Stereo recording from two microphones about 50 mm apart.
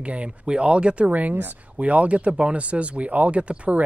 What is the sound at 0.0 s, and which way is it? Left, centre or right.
Speech, right.